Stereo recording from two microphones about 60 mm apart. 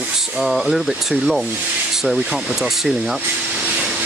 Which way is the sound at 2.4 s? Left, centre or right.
Centre.